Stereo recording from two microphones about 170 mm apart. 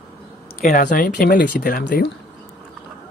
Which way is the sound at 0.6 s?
50° left (ahead or behind).